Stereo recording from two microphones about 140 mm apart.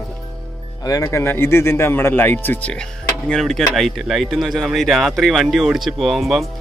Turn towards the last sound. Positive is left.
turn(degrees=0)  # may be behind; listen again after turning